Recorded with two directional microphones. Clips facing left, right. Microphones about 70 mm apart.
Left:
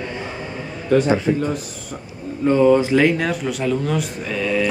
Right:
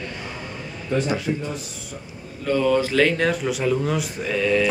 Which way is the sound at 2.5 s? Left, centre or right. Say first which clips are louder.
Left 6 dB; left.